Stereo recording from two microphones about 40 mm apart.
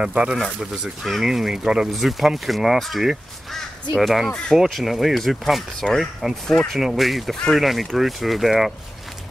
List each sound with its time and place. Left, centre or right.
0.0 s speech: right
1.0 s speech: centre
1.9 s speech: centre
6.4 s speech: centre
6.7 s speech: centre